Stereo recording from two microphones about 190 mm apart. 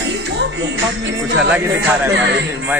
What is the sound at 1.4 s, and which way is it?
Speech, 5° right (ahead or behind).